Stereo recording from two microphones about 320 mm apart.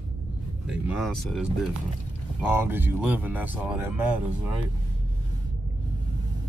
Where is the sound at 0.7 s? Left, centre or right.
Centre.